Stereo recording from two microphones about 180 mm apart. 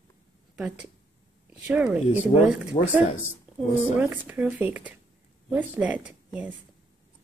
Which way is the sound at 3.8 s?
10° right (ahead or behind).